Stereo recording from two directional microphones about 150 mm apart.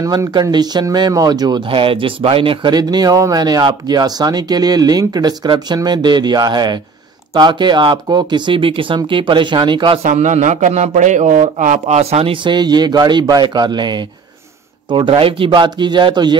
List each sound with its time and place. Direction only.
0.0 s speech: 25° right (ahead or behind)
10.0 s speech: 55° right (ahead or behind); by 16.3 s 30° right (ahead or behind)